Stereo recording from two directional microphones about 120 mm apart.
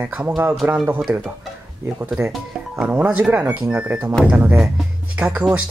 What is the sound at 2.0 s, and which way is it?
Speech, 5° right (ahead or behind).